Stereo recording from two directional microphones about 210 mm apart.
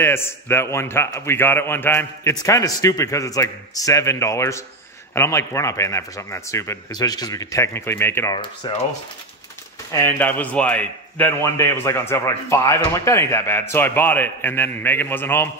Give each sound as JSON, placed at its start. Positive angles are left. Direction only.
{"t": 0.0, "sound": "a man's voice", "side_deg": 10}
{"t": 8.4, "sound": "speech", "side_deg": 25}
{"t": 9.9, "sound": "a man's voice", "side_deg": 10}